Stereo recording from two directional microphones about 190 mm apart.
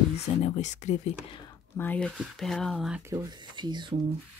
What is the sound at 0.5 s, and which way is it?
Speech, 40° left (ahead or behind).